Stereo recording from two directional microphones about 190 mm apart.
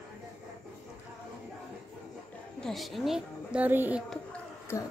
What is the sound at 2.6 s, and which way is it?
Speech, centre (ahead or behind).